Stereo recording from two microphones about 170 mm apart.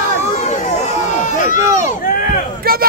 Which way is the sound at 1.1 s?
45° left (ahead or behind).